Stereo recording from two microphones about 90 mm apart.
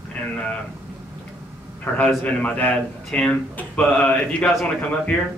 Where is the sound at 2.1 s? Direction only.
15° left (ahead or behind).